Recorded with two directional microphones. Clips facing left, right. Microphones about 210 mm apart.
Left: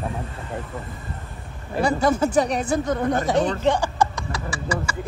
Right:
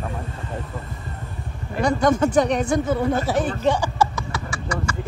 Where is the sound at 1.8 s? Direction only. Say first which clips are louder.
Right 1 dB; 5° left (ahead or behind).